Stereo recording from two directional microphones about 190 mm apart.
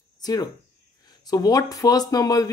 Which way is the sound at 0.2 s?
20° left (ahead or behind).